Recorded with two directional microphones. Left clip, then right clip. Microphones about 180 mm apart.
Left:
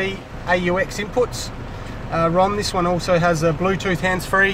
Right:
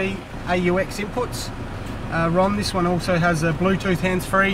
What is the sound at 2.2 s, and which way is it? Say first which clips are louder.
Speech: left 3 dB; 45° left (ahead or behind).